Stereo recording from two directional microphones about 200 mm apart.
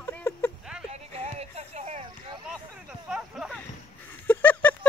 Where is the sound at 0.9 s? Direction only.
30° right (ahead or behind).